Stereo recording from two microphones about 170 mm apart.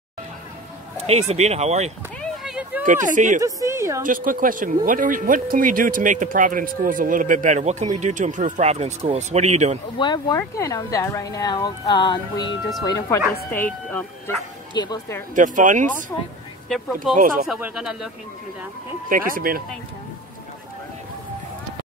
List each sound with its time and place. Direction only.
1.0 s speech: 40° right (ahead or behind)
2.4 s a sound: 5° right (ahead or behind)
2.8 s speech: 50° right (ahead or behind)
3.3 s a woman's voice: 20° right (ahead or behind)
4.0 s speech: 55° right (ahead or behind)
9.9 s speech: 25° left (ahead or behind)
13.5 s speech: 10° left (ahead or behind)
14.7 s speech: 25° left (ahead or behind)
15.3 s speech: 50° right (ahead or behind)
16.6 s speech: centre (ahead or behind)
19.0 s speech: 55° right (ahead or behind)